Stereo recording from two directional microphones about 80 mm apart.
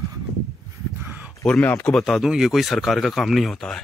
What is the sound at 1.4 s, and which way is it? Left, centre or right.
Speech, centre.